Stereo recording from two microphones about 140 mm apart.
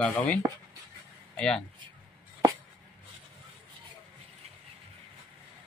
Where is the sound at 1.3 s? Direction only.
5° left (ahead or behind).